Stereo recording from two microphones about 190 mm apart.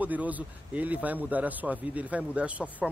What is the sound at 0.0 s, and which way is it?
A man's voice, 10° right (ahead or behind).